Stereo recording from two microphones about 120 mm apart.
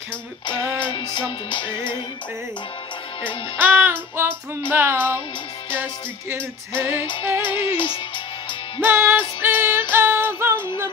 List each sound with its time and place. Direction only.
0.5 s music: 40° left (ahead or behind)
3.5 s music: 15° right (ahead or behind)
7.4 s music: 45° left (ahead or behind)
8.8 s music: 20° right (ahead or behind)
10.5 s music: 40° left (ahead or behind)